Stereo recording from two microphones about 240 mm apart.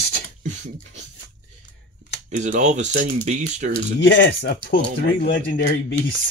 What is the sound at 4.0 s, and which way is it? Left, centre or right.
Speech, left.